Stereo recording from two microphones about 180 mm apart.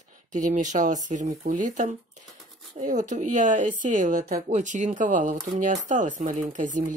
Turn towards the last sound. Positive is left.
turn(degrees=-45)  # may be behind; listen again after turning